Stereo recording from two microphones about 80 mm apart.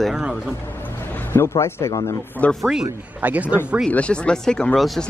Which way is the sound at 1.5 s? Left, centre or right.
Left.